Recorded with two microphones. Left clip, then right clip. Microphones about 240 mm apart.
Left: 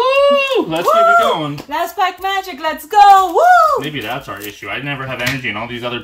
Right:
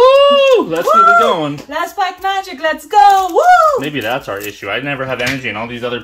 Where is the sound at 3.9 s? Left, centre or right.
Centre.